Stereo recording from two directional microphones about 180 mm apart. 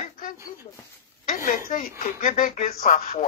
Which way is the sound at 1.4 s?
50° left (ahead or behind).